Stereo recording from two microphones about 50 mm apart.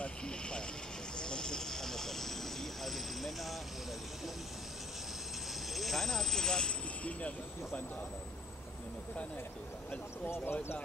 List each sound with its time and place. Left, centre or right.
0.0 s vehicle: centre
5.7 s a sound: centre
7.1 s speech: left
10.2 s speech: left